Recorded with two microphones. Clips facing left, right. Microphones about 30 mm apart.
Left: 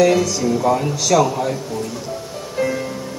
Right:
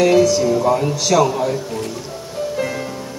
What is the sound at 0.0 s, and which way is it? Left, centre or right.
Speech, centre.